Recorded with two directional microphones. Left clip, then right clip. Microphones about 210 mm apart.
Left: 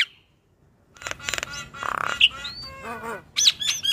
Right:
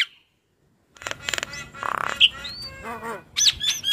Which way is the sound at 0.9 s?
Centre (ahead or behind).